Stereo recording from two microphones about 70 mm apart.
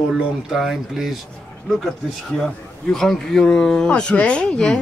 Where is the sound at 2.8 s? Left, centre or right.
Centre.